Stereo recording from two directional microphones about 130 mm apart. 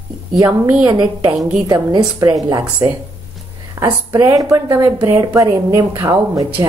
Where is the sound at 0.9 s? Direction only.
35° right (ahead or behind).